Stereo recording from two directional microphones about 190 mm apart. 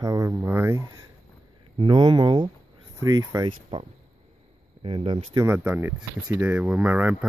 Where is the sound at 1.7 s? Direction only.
25° right (ahead or behind).